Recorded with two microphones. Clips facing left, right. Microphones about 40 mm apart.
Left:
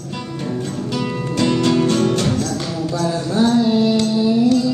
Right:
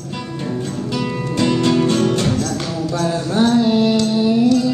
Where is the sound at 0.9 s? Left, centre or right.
Centre.